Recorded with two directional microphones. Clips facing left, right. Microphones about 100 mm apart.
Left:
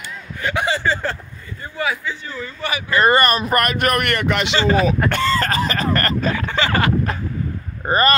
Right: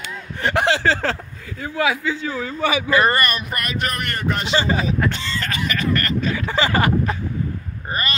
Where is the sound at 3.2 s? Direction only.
35° left (ahead or behind); by 4.9 s 80° left.